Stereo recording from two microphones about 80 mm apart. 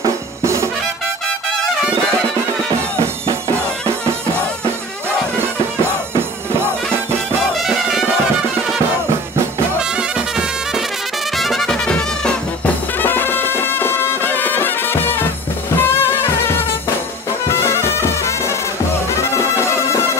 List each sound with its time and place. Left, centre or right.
0.0 s music: right
7.6 s music: centre
9.8 s music: centre
13.0 s music: left